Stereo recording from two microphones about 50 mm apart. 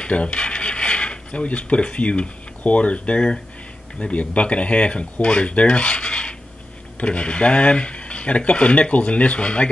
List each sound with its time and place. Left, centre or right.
0.0 s mechanisms: left
4.0 s speech: left